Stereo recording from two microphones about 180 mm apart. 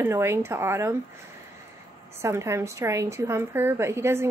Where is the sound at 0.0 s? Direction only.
15° right (ahead or behind).